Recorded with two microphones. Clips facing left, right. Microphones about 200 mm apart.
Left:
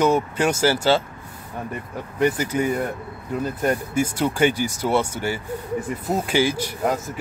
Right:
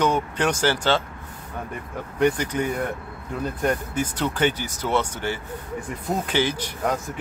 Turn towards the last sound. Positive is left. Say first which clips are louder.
# left 2 dB
turn(degrees=5)  # may be behind; listen again after turning